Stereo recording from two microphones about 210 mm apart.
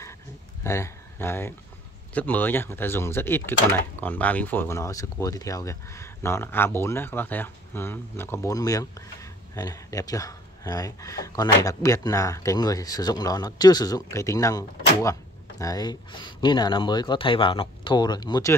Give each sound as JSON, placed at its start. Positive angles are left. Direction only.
{"t": 0.7, "sound": "speech", "side_deg": 15}